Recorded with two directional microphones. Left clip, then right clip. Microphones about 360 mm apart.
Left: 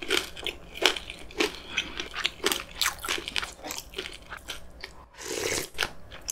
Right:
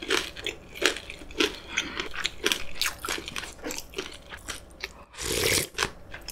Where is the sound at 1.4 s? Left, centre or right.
Centre.